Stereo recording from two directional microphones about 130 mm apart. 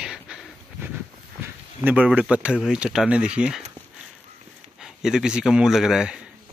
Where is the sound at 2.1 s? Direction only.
10° right (ahead or behind).